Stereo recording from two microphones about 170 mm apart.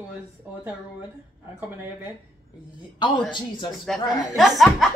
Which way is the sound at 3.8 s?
Centre (ahead or behind).